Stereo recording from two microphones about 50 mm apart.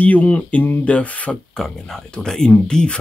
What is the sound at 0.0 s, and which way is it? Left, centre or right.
Speech, left.